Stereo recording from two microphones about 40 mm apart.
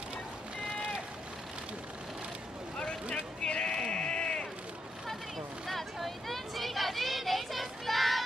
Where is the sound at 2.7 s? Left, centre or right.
Left.